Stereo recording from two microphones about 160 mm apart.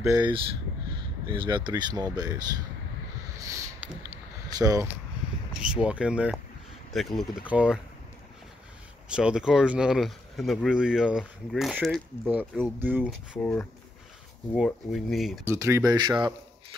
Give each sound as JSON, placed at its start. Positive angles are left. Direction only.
{"t": 0.0, "sound": "speech", "side_deg": -20}
{"t": 3.3, "sound": "a sound", "side_deg": -20}
{"t": 4.6, "sound": "speech", "side_deg": -20}
{"t": 5.6, "sound": "speech", "side_deg": -5}
{"t": 9.1, "sound": "speech", "side_deg": -5}
{"t": 12.7, "sound": "speech", "side_deg": -10}
{"t": 13.4, "sound": "speech", "side_deg": 10}
{"t": 15.4, "sound": "speech", "side_deg": -15}